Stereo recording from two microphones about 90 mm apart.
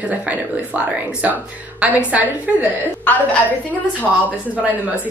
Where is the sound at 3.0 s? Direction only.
15° left (ahead or behind).